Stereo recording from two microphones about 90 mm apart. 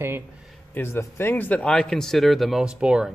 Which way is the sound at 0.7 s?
25° left (ahead or behind).